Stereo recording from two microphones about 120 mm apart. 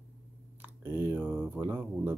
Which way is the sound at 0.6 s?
20° right (ahead or behind).